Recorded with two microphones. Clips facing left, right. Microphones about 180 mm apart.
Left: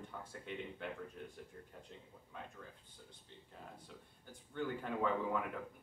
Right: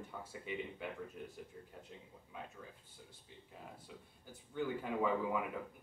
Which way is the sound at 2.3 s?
10° right (ahead or behind).